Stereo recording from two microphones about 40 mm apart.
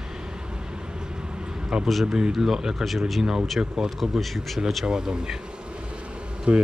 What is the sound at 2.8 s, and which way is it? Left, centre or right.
Speech, centre.